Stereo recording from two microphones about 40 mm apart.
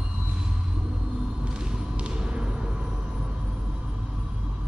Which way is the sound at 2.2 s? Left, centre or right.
Right.